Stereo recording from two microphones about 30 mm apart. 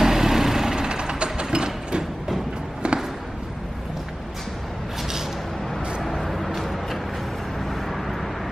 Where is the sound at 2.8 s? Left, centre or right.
Right.